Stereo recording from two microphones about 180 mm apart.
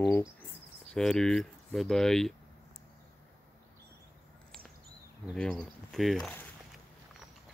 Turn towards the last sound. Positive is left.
turn(degrees=0)  # may be behind; listen again after turning